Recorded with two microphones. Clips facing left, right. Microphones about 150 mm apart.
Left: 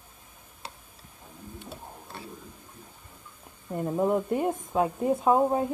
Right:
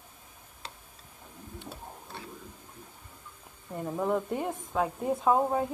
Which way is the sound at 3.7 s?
10° left (ahead or behind).